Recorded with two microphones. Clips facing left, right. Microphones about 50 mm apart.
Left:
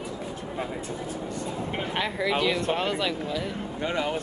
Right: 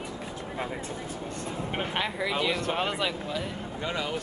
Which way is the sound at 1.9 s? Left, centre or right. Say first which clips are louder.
Left 5 dB; centre.